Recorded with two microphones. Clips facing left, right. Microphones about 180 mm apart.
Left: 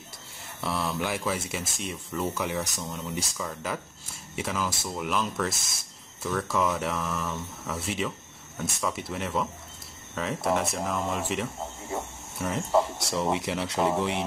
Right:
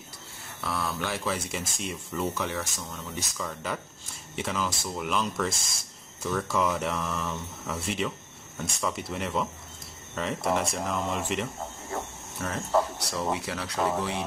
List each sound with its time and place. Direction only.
0.6 s speech: 25° left (ahead or behind)
1.0 s speech: 10° left (ahead or behind)
3.3 s speech: centre (ahead or behind)
11.9 s cricket: 10° left (ahead or behind)
13.3 s speech: 25° left (ahead or behind)